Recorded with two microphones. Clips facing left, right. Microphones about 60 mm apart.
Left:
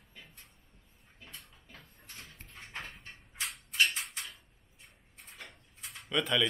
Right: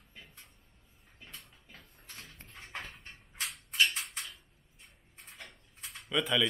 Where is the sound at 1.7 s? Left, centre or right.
Centre.